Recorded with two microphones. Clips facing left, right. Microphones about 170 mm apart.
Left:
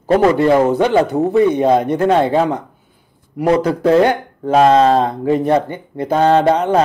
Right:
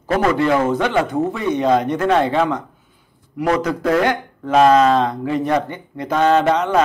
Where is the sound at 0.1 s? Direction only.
35° left (ahead or behind).